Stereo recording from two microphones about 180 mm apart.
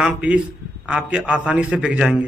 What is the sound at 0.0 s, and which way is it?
A man's voice, 5° right (ahead or behind).